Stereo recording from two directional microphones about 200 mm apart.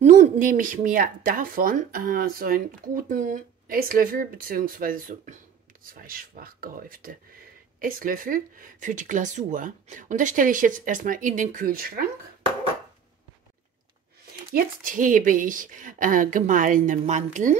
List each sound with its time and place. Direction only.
0.0 s speech: 40° right (ahead or behind)
14.5 s speech: 45° right (ahead or behind)